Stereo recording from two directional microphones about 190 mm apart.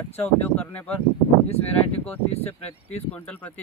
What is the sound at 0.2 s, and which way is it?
Speech, 10° left (ahead or behind).